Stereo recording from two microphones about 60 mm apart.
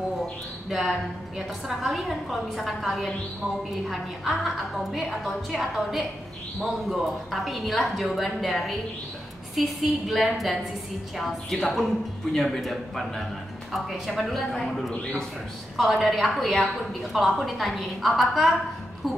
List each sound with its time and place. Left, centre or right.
0.7 s a woman's voice: centre
15.0 s a man's voice: centre
15.8 s a woman's voice: centre